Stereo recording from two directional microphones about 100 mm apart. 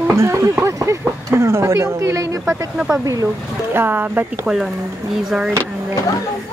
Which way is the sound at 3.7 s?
20° right (ahead or behind).